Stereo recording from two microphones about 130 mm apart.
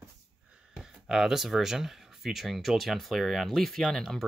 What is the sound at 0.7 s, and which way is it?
Speech, 5° right (ahead or behind).